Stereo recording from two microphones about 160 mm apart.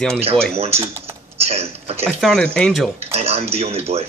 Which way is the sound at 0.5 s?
40° right (ahead or behind).